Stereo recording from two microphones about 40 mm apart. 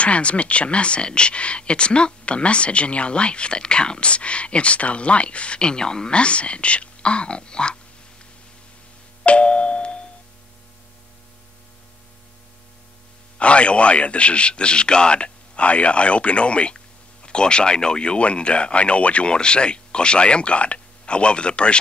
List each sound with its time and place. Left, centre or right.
0.0 s a man's voice: left
9.2 s doorbell: left
13.4 s a man's voice: left